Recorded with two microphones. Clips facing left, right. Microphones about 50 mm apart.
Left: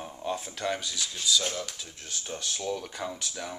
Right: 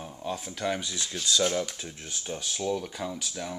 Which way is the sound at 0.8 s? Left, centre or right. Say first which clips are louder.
Right 1 dB; right.